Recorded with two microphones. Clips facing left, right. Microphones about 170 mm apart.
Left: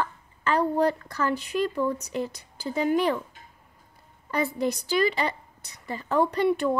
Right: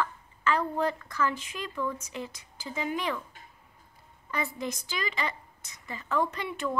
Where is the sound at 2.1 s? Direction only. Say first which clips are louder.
Left 8 dB; 40° left (ahead or behind).